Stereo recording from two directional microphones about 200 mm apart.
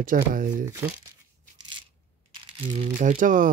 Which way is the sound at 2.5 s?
35° right (ahead or behind).